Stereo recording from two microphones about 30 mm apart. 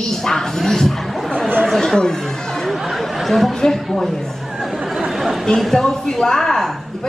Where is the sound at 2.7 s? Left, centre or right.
Centre.